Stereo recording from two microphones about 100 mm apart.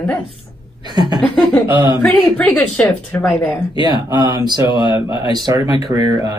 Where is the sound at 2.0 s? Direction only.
10° left (ahead or behind).